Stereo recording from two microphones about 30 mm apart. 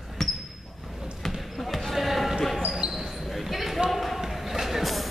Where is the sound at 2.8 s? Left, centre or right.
Right.